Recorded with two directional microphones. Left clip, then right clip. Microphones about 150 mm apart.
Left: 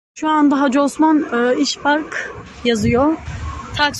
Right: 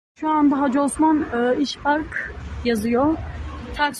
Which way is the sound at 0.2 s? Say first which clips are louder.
Left 4 dB; 20° left (ahead or behind).